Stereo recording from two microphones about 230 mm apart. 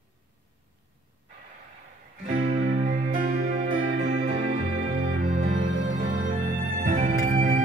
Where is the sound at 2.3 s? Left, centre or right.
Right.